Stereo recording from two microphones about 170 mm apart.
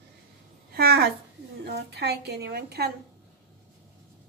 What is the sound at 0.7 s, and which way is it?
A woman's voice, 65° right (ahead or behind).